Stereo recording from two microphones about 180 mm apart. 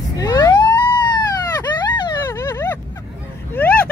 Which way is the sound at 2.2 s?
15° left (ahead or behind).